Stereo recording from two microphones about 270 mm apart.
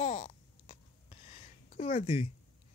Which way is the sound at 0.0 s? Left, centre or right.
Left.